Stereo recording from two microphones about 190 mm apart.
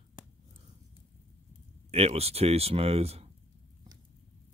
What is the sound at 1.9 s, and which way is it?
Speech, 30° right (ahead or behind).